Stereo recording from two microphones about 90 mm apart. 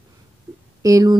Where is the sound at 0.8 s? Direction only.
40° right (ahead or behind).